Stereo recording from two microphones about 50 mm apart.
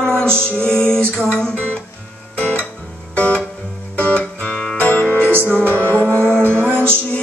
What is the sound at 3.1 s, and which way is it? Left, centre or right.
Music, left.